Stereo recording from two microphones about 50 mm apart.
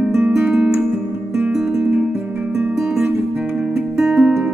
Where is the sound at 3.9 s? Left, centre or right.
Centre.